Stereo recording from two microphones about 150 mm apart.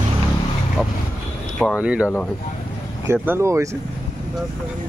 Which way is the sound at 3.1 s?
15° right (ahead or behind).